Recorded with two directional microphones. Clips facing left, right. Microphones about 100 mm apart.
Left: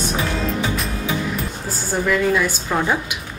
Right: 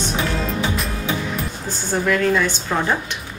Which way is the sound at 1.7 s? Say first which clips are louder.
Even; 5° left (ahead or behind).